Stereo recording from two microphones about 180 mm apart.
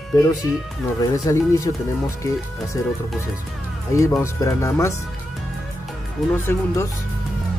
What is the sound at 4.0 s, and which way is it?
Speech, 15° left (ahead or behind).